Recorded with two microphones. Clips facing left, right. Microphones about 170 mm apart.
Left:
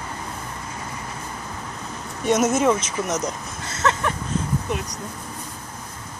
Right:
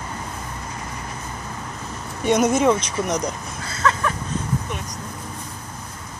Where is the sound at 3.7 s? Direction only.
25° left (ahead or behind).